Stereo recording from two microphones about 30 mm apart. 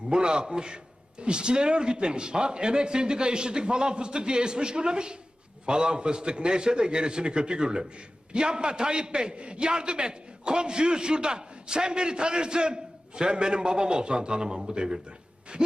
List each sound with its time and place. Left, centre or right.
0.1 s a man's voice: right